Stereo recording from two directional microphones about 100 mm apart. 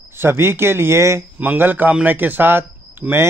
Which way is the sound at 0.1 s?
25° right (ahead or behind).